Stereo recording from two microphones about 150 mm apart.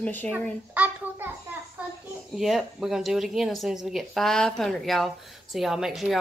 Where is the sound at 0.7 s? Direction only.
10° right (ahead or behind).